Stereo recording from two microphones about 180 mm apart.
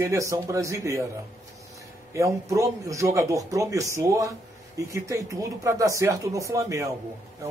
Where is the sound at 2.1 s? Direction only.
15° right (ahead or behind).